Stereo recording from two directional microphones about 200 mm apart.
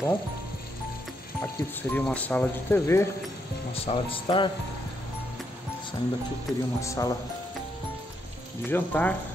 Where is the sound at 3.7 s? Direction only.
30° left (ahead or behind).